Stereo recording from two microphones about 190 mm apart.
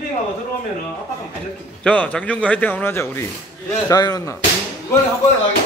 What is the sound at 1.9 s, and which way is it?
Speech, 5° left (ahead or behind).